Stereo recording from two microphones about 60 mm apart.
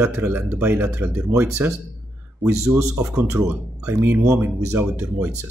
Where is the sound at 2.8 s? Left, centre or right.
Right.